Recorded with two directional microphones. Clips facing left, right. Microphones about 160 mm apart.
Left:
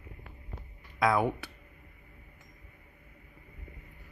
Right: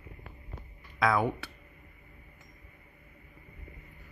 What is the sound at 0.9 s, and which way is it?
Speech, 15° left (ahead or behind).